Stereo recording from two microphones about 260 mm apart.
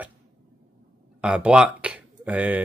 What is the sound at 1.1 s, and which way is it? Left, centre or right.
Speech, centre.